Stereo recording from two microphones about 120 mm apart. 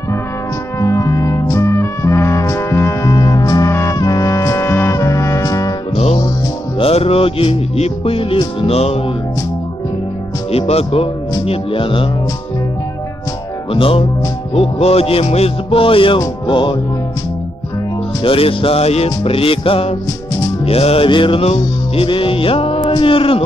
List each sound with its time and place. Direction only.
0.7 s music: 25° left (ahead or behind)
5.9 s music: 55° left (ahead or behind)
10.5 s music: 55° left (ahead or behind)
13.7 s music: 50° left (ahead or behind)
18.2 s music: 50° left (ahead or behind)
22.8 s a sound: 50° left (ahead or behind)